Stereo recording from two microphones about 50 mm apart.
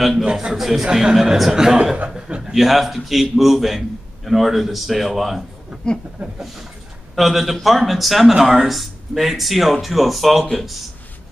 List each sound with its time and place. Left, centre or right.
0.2 s a man's voice: centre
0.6 s speech: centre
0.8 s a man's voice: centre
2.5 s speech: centre
7.2 s speech: centre